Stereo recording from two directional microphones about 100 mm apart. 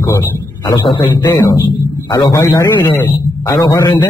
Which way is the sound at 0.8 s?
55° left (ahead or behind).